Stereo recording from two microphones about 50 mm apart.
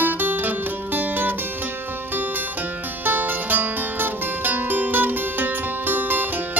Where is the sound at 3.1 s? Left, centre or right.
Right.